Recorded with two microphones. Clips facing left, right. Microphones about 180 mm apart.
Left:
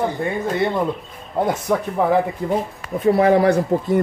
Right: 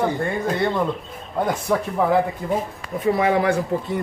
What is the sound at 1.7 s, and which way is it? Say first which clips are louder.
Speech: even; 5° left (ahead or behind).